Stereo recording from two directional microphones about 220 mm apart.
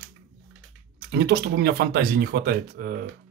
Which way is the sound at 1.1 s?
45° right (ahead or behind).